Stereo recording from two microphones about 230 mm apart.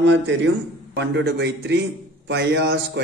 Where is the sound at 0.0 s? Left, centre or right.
Right.